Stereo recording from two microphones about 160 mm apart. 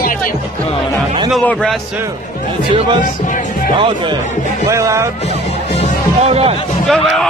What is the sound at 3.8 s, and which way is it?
Speech, 30° right (ahead or behind).